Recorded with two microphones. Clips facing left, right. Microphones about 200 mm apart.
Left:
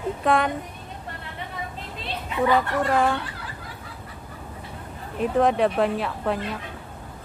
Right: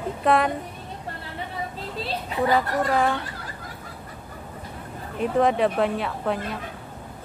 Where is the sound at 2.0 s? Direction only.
35° right (ahead or behind).